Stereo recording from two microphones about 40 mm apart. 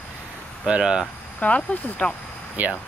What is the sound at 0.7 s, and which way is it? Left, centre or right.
Speech, centre.